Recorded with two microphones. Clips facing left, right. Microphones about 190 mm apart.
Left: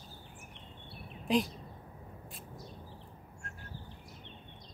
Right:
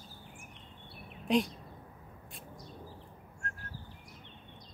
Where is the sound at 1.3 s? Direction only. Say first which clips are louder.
Right 1 dB; centre (ahead or behind).